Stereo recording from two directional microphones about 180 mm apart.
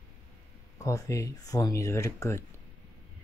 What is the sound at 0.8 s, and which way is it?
Speech, 15° left (ahead or behind).